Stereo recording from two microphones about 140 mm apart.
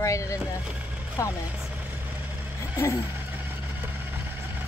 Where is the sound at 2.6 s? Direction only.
20° left (ahead or behind).